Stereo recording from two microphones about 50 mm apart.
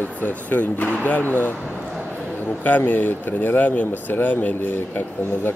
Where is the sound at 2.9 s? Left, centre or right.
Left.